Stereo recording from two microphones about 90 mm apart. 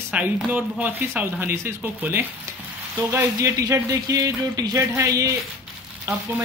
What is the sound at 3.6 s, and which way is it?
Speech, 40° right (ahead or behind).